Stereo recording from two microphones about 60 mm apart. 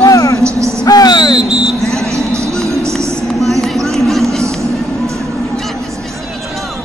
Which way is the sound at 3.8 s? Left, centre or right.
Centre.